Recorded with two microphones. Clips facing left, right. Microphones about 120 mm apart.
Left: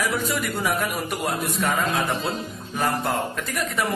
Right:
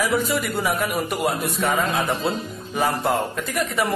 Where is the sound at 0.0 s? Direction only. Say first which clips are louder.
Right 3 dB; centre (ahead or behind).